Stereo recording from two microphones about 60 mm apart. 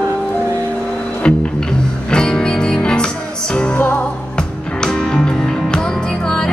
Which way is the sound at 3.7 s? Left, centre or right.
Left.